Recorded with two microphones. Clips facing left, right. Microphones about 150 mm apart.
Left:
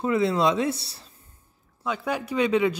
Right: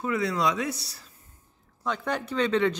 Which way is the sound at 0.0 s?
25° left (ahead or behind).